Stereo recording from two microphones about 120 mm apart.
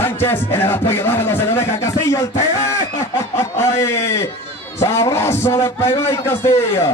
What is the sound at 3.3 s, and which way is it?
Speech, 20° left (ahead or behind).